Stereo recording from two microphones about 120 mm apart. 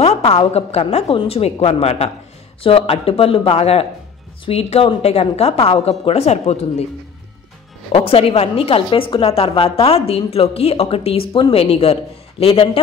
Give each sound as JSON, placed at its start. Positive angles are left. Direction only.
{"t": 0.5, "sound": "a woman's voice", "side_deg": 60}
{"t": 2.6, "sound": "a woman's voice", "side_deg": 50}
{"t": 7.9, "sound": "a woman's voice", "side_deg": 55}